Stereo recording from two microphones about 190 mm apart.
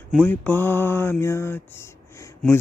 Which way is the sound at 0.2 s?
10° left (ahead or behind).